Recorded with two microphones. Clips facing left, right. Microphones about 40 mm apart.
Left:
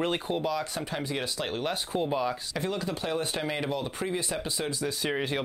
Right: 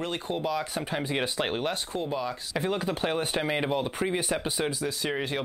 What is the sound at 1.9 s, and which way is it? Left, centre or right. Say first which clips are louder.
Speech: left 2 dB; centre.